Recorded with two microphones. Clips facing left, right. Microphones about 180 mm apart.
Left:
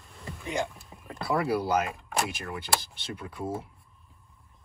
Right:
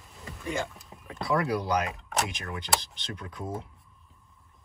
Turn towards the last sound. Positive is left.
turn(degrees=5)  # may be behind; listen again after turning